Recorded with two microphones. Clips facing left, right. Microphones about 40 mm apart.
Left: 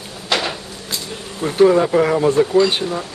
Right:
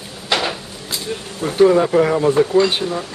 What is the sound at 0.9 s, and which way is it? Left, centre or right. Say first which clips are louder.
Speech: right 2 dB; centre.